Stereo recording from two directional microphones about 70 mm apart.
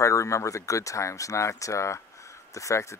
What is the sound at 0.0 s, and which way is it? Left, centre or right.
Speech, left.